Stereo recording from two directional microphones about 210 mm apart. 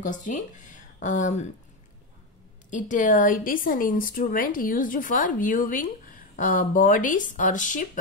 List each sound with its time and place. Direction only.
0.0 s speech: 40° left (ahead or behind)
2.7 s speech: 40° left (ahead or behind)